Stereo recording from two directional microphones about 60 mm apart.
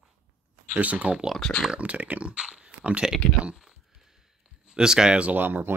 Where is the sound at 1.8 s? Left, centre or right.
Right.